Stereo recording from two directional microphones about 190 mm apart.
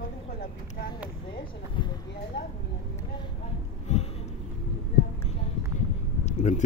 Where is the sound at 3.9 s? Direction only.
35° left (ahead or behind).